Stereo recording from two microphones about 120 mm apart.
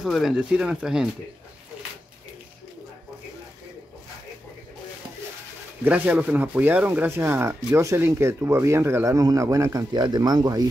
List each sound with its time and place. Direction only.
0.0 s speech: 5° right (ahead or behind)
5.9 s speech: 15° right (ahead or behind); by 10.7 s 35° right (ahead or behind)